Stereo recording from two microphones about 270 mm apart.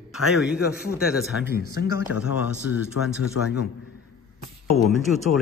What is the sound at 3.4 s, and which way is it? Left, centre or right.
Speech, left.